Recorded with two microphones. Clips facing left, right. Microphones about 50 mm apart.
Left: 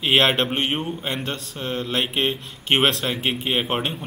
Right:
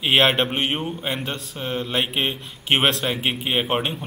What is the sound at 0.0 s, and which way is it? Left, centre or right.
A man's voice, centre.